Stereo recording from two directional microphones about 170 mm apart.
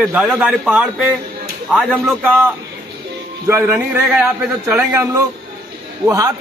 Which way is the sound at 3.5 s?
15° right (ahead or behind).